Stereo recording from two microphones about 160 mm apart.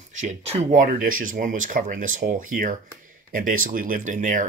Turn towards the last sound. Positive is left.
turn(degrees=-55)  # may be behind; listen again after turning